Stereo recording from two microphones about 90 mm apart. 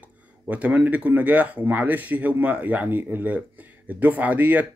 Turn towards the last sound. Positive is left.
turn(degrees=-20)  # may be behind; listen again after turning